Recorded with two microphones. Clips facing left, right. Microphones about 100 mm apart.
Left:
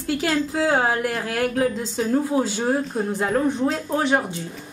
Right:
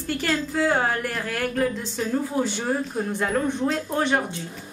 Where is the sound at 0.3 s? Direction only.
40° left (ahead or behind).